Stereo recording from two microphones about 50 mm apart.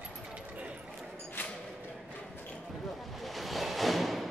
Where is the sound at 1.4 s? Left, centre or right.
Left.